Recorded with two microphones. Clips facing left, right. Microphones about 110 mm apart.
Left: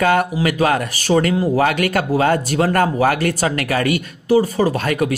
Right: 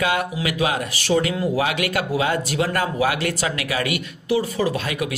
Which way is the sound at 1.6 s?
50° left (ahead or behind).